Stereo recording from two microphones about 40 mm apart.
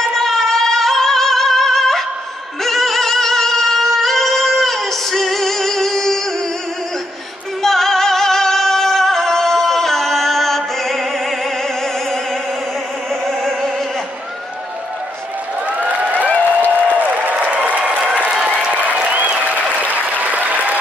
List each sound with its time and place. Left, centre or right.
0.0 s music: centre
2.6 s singing: centre
7.6 s music: centre
13.1 s opera: centre
15.7 s a sound: right
16.3 s a sound: left
16.9 s applause: right
19.0 s applause: right